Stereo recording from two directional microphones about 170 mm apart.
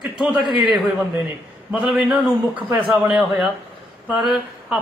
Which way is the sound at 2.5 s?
30° right (ahead or behind).